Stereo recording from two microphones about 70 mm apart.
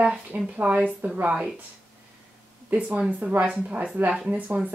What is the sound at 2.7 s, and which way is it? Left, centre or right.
Speech, centre.